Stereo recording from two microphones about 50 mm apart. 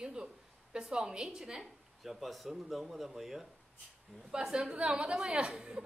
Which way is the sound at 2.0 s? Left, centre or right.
Centre.